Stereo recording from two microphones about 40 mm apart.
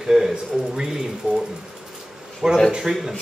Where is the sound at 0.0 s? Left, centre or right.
Centre.